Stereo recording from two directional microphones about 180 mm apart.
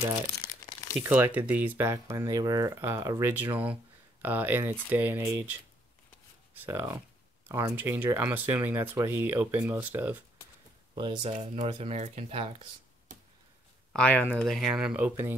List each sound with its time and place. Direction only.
0.4 s crumpling: 15° left (ahead or behind)
0.9 s speech: 10° right (ahead or behind)
11.0 s speech: 25° right (ahead or behind)
13.9 s speech: 10° left (ahead or behind); by 15.3 s 10° right (ahead or behind)